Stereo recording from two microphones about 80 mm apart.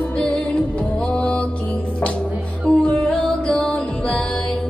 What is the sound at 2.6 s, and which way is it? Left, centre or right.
Music, centre.